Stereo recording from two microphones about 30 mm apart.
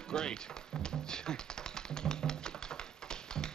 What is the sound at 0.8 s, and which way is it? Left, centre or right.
Music, left.